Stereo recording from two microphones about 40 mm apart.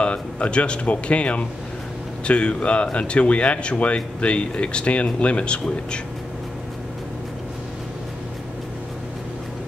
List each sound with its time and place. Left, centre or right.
0.0 s speech: left